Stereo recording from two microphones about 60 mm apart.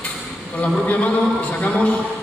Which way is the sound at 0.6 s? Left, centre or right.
Left.